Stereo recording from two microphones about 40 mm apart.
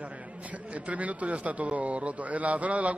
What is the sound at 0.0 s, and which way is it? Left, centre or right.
A man's voice, right.